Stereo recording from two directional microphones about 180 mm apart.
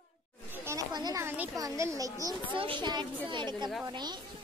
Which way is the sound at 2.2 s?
30° right (ahead or behind).